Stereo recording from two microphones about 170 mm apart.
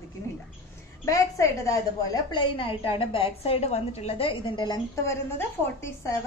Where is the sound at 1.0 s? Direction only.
20° left (ahead or behind).